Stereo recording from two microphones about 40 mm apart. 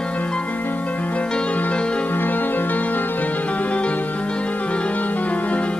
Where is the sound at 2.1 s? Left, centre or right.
Left.